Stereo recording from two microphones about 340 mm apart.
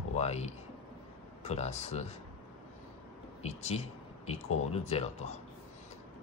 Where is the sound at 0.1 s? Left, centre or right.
Centre.